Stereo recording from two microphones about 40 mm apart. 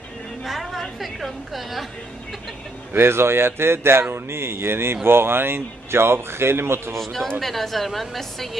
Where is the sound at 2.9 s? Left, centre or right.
Right.